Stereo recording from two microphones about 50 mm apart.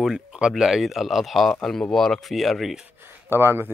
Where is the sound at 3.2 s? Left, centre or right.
Right.